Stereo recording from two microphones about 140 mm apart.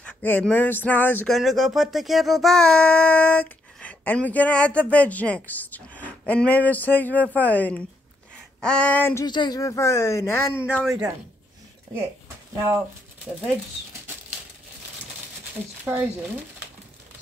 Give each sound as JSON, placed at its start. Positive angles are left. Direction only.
{"t": 0.0, "sound": "speech", "side_deg": 10}
{"t": 1.3, "sound": "speech", "side_deg": 0}
{"t": 9.2, "sound": "speech", "side_deg": 30}
{"t": 15.8, "sound": "speech", "side_deg": -10}